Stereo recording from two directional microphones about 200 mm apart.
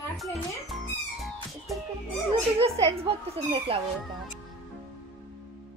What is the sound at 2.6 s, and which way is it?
Speech, 30° right (ahead or behind).